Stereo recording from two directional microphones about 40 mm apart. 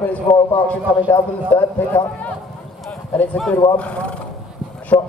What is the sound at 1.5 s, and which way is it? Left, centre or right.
Speech, left.